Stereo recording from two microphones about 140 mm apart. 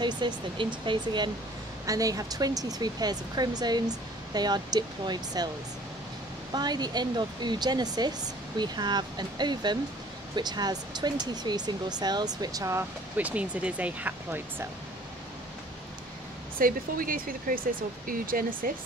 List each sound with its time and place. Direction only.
0.0 s speech: 35° right (ahead or behind)
6.5 s speech: 30° right (ahead or behind)
13.2 s speech: 10° right (ahead or behind)
16.5 s speech: 90° right